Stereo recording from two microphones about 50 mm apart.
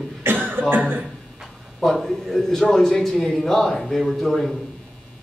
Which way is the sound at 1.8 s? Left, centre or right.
Centre.